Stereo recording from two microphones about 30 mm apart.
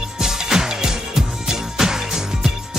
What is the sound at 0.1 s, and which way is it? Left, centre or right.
Music, centre.